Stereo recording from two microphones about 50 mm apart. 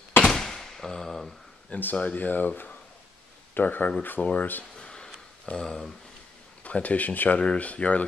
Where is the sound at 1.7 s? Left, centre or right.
Left.